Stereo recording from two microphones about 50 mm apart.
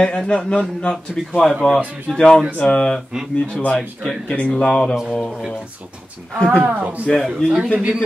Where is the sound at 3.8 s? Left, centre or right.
Centre.